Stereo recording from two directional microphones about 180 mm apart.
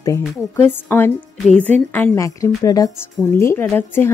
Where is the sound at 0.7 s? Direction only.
10° left (ahead or behind).